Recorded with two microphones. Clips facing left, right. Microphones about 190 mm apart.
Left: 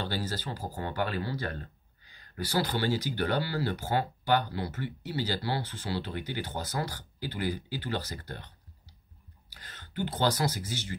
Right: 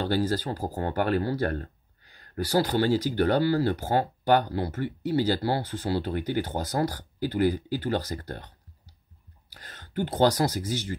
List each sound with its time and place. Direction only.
0.0 s speech: 45° right (ahead or behind)
2.3 s speech: 45° right (ahead or behind)
9.6 s speech: 45° right (ahead or behind)